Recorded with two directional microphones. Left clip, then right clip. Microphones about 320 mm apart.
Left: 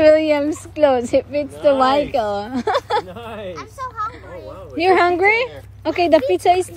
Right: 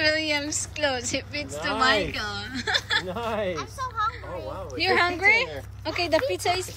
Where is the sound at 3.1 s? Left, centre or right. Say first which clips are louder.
Right 3 dB; right.